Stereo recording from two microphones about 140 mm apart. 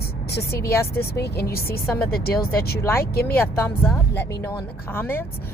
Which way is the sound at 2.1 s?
90° left.